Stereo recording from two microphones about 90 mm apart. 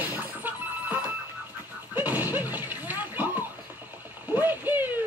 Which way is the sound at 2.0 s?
20° right (ahead or behind).